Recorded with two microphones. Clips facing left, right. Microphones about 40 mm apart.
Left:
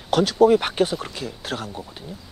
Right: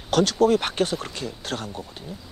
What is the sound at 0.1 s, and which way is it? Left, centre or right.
Speech, centre.